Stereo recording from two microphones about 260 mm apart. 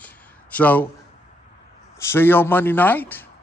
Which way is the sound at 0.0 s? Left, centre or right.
Centre.